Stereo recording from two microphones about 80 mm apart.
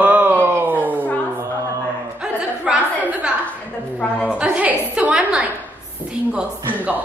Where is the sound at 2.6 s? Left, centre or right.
Centre.